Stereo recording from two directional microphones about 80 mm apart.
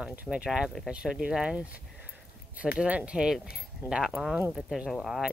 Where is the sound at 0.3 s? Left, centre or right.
Centre.